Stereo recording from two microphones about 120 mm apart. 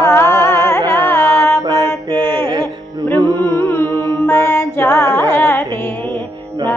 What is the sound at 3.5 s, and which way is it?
Music, 20° left (ahead or behind).